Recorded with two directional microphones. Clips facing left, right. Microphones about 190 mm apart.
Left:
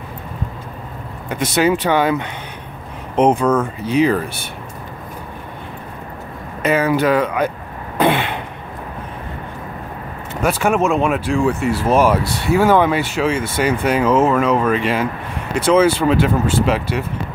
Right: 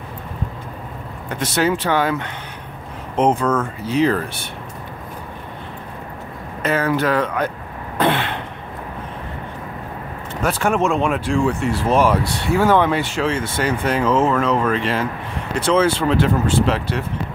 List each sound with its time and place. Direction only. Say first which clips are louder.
1.3 s speech: left 3 dB; 15° left (ahead or behind)
6.6 s speech: left 3 dB; 15° left (ahead or behind)
8.0 s throat clearing: left 3 dB; 10° left (ahead or behind)
10.4 s speech: left 2 dB; 10° left (ahead or behind)